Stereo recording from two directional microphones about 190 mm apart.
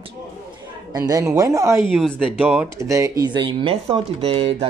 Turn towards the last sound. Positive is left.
turn(degrees=-30)  # may be behind; listen again after turning